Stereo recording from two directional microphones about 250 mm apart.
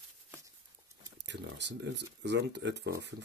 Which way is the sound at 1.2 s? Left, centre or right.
Right.